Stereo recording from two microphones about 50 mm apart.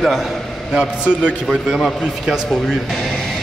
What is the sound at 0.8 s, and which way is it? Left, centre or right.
Speech, right.